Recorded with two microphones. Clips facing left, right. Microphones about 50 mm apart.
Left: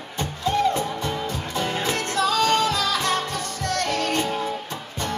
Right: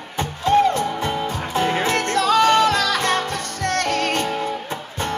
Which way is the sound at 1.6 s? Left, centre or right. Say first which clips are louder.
Right 6 dB; right.